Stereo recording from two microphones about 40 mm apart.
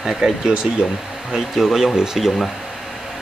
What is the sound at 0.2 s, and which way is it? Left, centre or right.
Speech, centre.